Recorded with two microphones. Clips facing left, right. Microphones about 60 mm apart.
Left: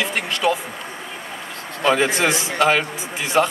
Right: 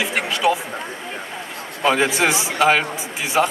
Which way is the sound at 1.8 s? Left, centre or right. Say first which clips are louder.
Even; centre.